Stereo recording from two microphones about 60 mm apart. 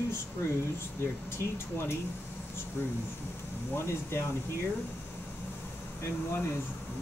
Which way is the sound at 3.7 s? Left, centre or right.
Left.